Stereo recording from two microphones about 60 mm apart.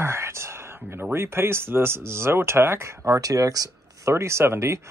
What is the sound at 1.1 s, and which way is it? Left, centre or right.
Speech, right.